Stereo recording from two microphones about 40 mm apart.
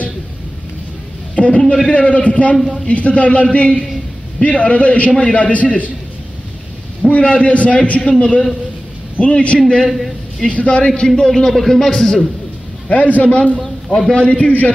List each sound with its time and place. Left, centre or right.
1.3 s a sound: left
1.9 s a man's voice: left
2.5 s speech: centre
2.9 s a man's voice: left
7.0 s a man's voice: left
9.8 s a man's voice: centre
10.5 s speech: left
11.1 s speech: centre
12.9 s a man's voice: left
13.6 s speech: centre
14.1 s speech: left